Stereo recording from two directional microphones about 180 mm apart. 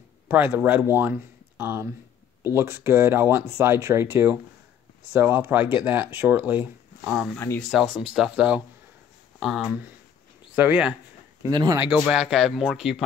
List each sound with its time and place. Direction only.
0.3 s speech: 10° right (ahead or behind)
7.3 s speech: 10° left (ahead or behind)
7.7 s speech: 5° right (ahead or behind)
11.4 s speech: 20° right (ahead or behind)
12.0 s speech: centre (ahead or behind)